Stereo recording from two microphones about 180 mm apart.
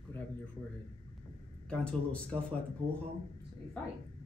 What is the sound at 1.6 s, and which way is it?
Speech, 5° left (ahead or behind).